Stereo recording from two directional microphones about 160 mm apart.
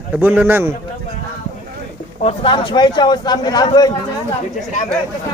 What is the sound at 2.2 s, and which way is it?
A man's voice, 40° left (ahead or behind).